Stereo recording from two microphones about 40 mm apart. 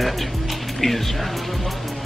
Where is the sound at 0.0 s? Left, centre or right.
Centre.